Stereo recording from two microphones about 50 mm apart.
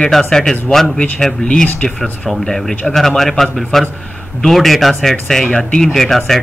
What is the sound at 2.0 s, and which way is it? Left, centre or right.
Speech, centre.